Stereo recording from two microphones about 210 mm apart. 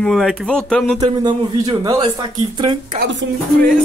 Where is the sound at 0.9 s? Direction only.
20° right (ahead or behind).